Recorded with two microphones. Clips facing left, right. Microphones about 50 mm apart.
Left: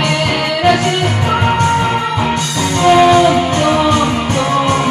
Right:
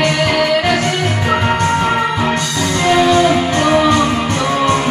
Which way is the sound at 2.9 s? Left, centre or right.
Centre.